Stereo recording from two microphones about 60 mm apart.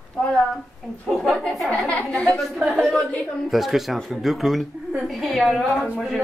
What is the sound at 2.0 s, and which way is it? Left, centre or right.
A woman's voice, centre.